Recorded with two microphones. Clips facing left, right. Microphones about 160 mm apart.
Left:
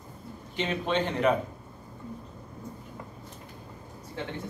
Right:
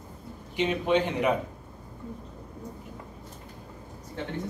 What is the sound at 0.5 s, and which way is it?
Speech, 10° right (ahead or behind).